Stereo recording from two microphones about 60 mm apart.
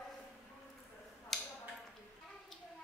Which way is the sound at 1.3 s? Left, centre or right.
Centre.